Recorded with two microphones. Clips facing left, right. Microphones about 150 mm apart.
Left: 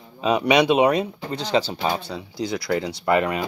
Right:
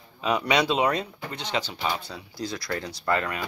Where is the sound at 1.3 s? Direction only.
35° left (ahead or behind).